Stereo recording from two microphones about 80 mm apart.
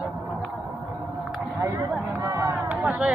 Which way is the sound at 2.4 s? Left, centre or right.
Right.